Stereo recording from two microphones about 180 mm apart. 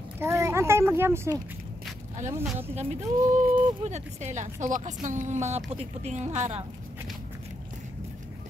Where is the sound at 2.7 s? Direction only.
35° right (ahead or behind).